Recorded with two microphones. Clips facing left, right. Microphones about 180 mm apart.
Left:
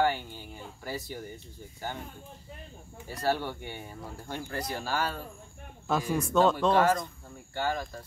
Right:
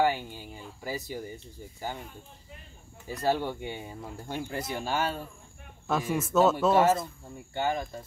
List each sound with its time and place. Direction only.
0.0 s speech: 15° right (ahead or behind)
3.1 s speech: 15° right (ahead or behind)
5.9 s speech: centre (ahead or behind); by 8.0 s 20° right (ahead or behind)